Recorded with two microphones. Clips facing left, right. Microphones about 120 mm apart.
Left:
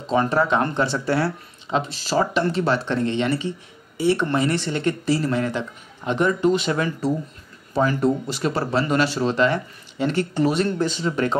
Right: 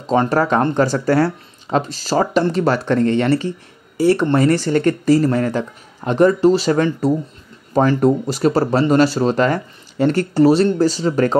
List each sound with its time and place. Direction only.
0.0 s speech: 40° right (ahead or behind)